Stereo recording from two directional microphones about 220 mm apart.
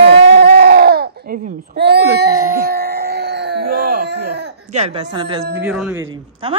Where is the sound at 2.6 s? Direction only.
45° right (ahead or behind).